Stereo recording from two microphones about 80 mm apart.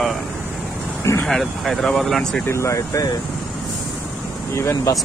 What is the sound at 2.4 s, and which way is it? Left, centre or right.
Speech, left.